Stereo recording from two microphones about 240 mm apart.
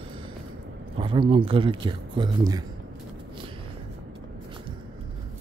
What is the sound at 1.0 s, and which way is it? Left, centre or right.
Speech, right.